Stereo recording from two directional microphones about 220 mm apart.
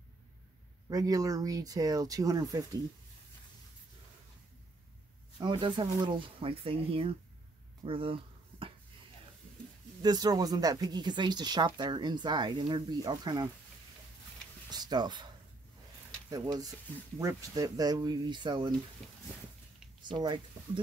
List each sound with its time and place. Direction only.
0.8 s speech: 15° right (ahead or behind)
5.4 s speech: 20° right (ahead or behind)
7.8 s a sound: 25° right (ahead or behind)
10.0 s speech: 15° right (ahead or behind)
14.7 s speech: 20° right (ahead or behind)
16.3 s speech: 20° right (ahead or behind)
20.0 s speech: 20° right (ahead or behind)